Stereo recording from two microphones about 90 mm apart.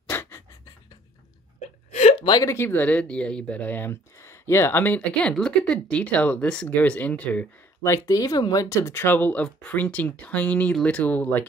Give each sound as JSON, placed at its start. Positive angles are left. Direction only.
{"t": 0.1, "sound": "pant", "side_deg": 25}
{"t": 2.1, "sound": "a sound", "side_deg": 65}
{"t": 2.4, "sound": "speech", "side_deg": 30}
{"t": 4.9, "sound": "speech", "side_deg": 10}
{"t": 7.8, "sound": "speech", "side_deg": 35}